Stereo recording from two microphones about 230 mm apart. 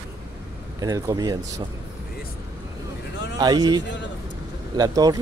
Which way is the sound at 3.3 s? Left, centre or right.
Centre.